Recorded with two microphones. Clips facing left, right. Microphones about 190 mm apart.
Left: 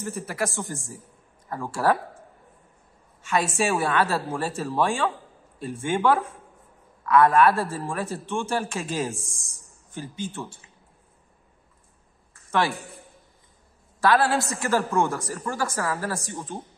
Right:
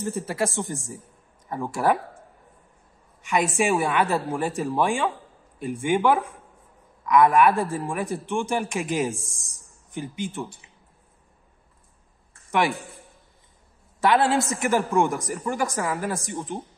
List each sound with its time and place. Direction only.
0.2 s a woman's voice: 25° right (ahead or behind)
3.2 s a man's voice: 15° right (ahead or behind)
12.4 s a sound: 15° right (ahead or behind)
14.0 s a woman's voice: 20° right (ahead or behind)